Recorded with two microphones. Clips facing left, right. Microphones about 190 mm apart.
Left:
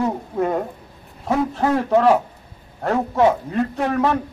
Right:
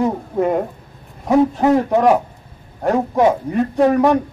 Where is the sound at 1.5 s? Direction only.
15° right (ahead or behind).